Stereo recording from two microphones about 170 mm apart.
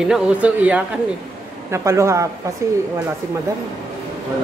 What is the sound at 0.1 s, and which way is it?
A man's voice, 10° right (ahead or behind).